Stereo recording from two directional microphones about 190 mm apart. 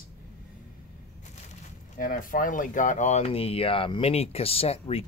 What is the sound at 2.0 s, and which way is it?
Speech, 45° left (ahead or behind).